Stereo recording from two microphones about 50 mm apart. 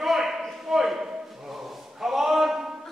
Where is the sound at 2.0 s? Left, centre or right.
Centre.